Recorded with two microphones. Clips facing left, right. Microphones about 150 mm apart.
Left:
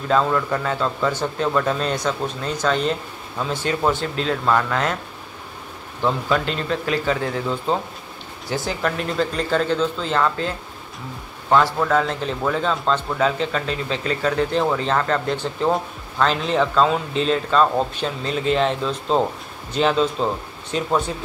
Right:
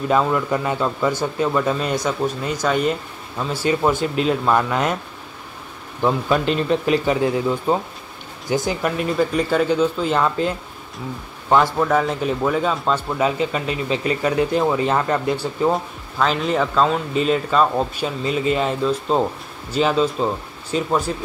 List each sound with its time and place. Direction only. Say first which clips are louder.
0.1 s speech: even; 15° right (ahead or behind)
6.0 s speech: right 3 dB; 15° right (ahead or behind)